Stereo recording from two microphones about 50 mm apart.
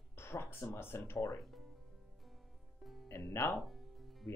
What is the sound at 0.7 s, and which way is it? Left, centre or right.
Speech, left.